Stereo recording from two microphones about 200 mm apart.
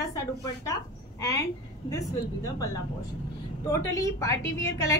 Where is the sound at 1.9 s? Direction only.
15° left (ahead or behind).